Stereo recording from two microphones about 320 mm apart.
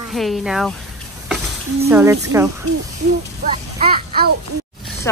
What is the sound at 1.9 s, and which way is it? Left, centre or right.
Speech, centre.